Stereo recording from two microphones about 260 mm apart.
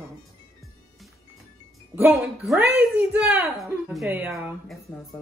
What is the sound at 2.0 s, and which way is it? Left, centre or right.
Speech, centre.